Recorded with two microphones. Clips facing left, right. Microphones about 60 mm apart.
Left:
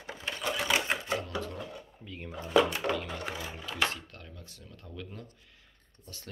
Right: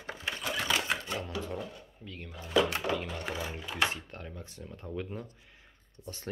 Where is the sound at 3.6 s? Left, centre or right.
Centre.